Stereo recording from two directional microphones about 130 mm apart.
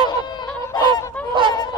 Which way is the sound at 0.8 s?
40° right (ahead or behind).